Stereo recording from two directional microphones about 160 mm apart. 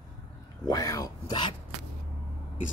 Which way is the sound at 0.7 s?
20° left (ahead or behind).